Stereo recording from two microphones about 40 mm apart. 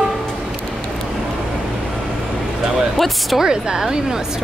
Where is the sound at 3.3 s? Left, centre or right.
Centre.